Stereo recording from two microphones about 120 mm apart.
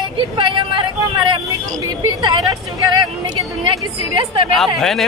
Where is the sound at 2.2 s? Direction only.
35° right (ahead or behind).